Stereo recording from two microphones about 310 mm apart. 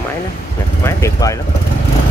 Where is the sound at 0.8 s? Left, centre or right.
Centre.